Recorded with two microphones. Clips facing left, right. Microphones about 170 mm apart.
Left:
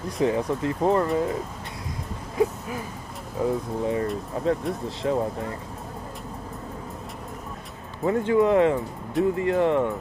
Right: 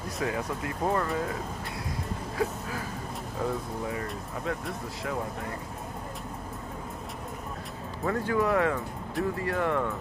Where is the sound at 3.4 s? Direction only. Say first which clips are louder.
Left 6 dB; 15° left (ahead or behind).